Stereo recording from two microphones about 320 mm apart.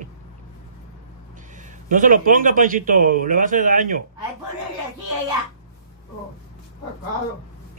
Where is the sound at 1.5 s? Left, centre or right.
Right.